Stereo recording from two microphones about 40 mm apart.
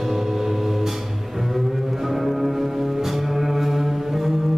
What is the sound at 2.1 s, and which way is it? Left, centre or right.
Music, centre.